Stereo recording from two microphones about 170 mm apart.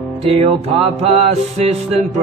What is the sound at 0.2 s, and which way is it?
Music, 35° right (ahead or behind).